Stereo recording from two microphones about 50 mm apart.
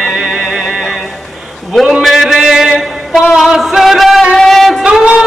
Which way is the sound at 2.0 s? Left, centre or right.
Centre.